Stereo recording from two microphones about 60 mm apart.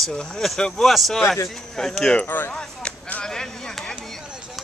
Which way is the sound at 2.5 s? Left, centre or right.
Centre.